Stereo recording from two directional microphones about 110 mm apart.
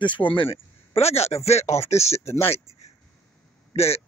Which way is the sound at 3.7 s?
70° left (ahead or behind).